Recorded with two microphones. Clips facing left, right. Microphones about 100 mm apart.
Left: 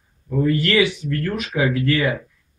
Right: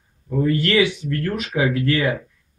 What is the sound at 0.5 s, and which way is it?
Speech, 30° right (ahead or behind).